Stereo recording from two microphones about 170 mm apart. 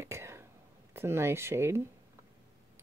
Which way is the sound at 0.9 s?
15° right (ahead or behind).